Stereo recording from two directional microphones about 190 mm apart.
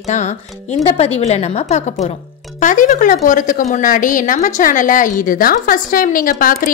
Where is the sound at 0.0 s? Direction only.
35° left (ahead or behind).